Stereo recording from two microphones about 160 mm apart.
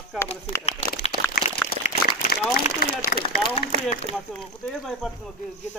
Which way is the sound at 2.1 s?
60° left (ahead or behind).